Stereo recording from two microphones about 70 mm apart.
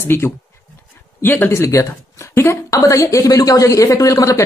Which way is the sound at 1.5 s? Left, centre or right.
Left.